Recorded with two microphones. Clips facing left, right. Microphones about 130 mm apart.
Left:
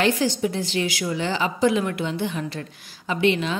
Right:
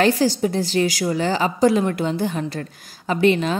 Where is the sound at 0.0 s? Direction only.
35° right (ahead or behind).